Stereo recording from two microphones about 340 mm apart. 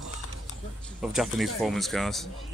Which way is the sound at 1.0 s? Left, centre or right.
Centre.